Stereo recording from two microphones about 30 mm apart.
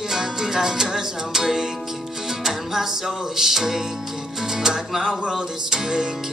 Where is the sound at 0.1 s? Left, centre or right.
Centre.